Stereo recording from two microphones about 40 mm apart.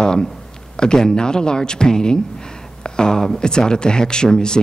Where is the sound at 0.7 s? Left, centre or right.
Centre.